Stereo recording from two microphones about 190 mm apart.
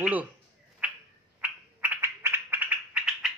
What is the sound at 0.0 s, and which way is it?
Speech, 5° right (ahead or behind).